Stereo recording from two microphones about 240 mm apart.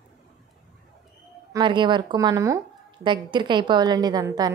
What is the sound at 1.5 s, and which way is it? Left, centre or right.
A woman's voice, centre.